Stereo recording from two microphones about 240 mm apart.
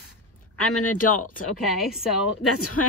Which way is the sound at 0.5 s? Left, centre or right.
Left.